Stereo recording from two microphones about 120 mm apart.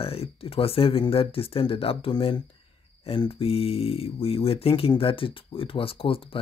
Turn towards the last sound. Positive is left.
turn(degrees=50)  # may be behind; listen again after turning